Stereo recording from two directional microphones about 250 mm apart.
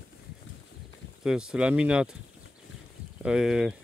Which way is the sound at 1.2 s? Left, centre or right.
Centre.